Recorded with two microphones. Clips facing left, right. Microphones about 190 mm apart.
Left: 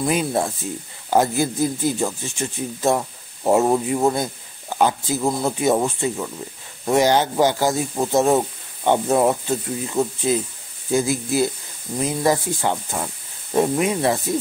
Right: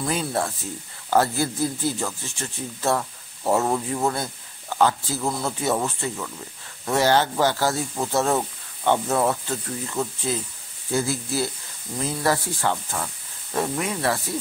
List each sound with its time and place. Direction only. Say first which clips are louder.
0.0 s speech: left 4 dB; 15° left (ahead or behind)